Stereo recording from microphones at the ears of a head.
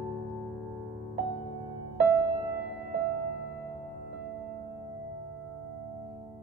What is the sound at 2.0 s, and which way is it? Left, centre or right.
Music, right.